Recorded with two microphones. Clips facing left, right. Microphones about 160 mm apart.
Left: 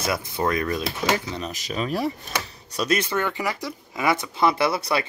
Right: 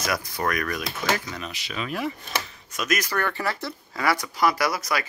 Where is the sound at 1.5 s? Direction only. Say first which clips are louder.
Left 5 dB; 40° left (ahead or behind).